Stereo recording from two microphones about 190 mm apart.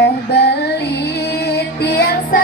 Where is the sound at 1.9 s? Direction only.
55° left (ahead or behind).